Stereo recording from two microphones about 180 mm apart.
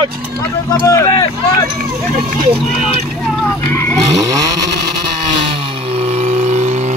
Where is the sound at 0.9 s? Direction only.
20° left (ahead or behind).